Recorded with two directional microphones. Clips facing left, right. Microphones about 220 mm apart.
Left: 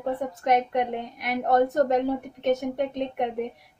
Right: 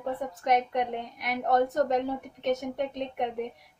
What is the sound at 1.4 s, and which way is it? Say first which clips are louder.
Speech: left 3 dB; 50° left (ahead or behind).